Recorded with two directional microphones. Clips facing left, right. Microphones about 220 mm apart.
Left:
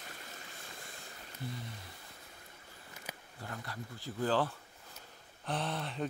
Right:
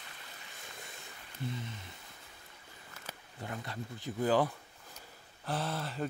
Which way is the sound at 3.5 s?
20° right (ahead or behind).